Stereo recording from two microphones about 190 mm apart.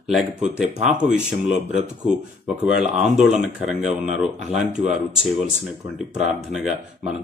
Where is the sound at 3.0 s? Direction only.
Centre (ahead or behind).